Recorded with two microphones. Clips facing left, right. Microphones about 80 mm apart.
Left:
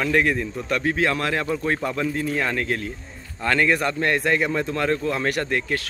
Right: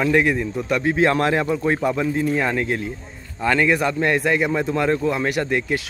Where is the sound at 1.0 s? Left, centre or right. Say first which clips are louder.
Right 5 dB; right.